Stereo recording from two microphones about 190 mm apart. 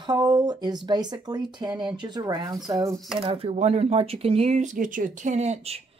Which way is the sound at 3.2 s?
30° right (ahead or behind).